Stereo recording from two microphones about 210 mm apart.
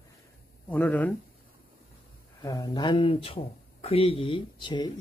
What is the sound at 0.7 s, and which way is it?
Speech, 10° left (ahead or behind).